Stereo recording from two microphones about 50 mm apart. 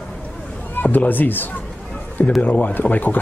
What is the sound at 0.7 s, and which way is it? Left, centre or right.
Speech, left.